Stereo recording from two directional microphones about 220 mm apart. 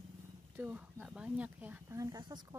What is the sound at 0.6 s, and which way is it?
Speech, 5° right (ahead or behind).